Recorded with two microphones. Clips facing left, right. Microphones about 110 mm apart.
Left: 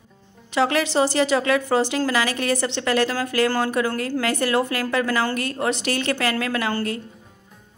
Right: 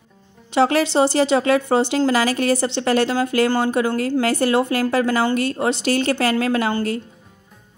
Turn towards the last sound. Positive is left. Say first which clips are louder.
# right 4 dB
turn(degrees=-25)  # may be behind; listen again after turning